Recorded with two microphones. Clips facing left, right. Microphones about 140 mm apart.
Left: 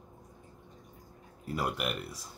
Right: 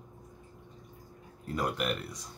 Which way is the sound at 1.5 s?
5° left (ahead or behind).